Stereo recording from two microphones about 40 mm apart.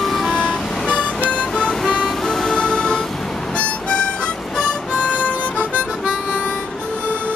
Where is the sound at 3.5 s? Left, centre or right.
Left.